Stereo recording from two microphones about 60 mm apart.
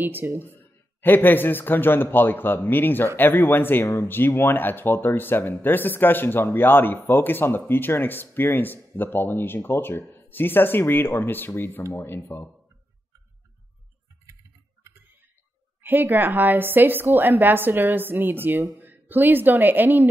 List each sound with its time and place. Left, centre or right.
0.0 s a woman's voice: right
1.0 s speech: left
15.8 s a woman's voice: right